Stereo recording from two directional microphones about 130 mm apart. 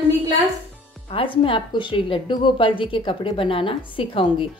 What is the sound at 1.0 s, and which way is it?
A woman's voice, 45° left (ahead or behind).